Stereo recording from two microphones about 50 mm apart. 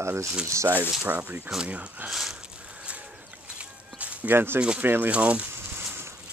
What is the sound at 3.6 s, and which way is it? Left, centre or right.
Walk, right.